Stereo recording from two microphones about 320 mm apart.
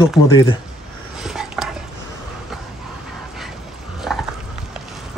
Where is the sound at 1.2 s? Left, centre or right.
Centre.